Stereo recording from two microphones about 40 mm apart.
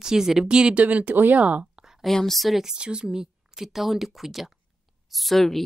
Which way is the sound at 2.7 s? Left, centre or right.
Right.